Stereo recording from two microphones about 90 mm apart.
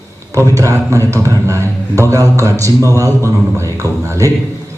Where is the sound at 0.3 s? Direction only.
35° right (ahead or behind).